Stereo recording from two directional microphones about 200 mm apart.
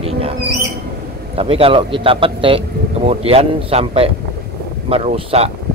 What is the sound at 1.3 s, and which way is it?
A man's voice, 30° right (ahead or behind).